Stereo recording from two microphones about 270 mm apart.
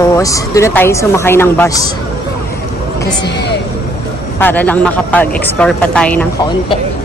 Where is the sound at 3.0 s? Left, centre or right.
Centre.